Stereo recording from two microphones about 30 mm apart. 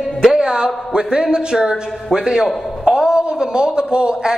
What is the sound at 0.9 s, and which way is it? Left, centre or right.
A man's voice, right.